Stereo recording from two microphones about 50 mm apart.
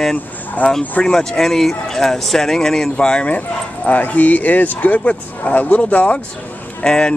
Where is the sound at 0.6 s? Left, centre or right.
Left.